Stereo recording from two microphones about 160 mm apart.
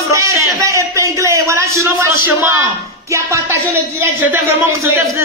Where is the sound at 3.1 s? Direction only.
15° right (ahead or behind).